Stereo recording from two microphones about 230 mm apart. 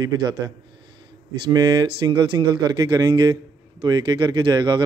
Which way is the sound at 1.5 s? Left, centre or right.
Centre.